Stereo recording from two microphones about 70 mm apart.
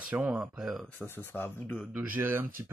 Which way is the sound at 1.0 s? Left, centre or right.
Left.